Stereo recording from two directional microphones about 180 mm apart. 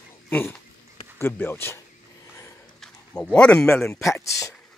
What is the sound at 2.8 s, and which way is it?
Speech, 5° left (ahead or behind).